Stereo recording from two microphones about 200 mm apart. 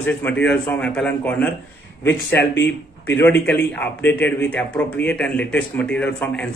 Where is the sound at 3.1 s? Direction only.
10° left (ahead or behind).